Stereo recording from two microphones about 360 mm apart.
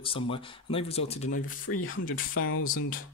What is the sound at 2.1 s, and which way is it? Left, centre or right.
Speech, left.